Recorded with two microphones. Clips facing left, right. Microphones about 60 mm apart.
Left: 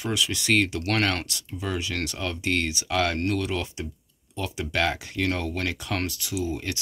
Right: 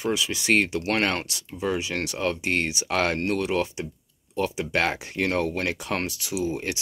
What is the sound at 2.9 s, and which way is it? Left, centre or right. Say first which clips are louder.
Speech: right 1 dB; right.